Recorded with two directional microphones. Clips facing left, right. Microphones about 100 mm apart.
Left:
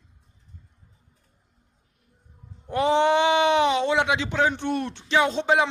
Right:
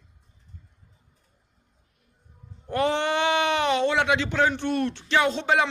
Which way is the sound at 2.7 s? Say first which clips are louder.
Left 4 dB; 20° left (ahead or behind).